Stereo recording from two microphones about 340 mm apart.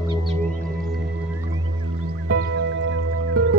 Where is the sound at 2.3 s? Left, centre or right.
Right.